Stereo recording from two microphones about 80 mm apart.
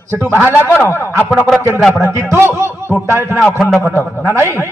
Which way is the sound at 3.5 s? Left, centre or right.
Centre.